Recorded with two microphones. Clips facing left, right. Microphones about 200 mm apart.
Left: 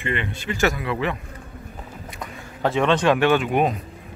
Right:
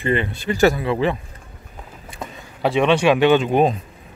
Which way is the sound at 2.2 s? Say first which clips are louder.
Right 4 dB; 25° right (ahead or behind).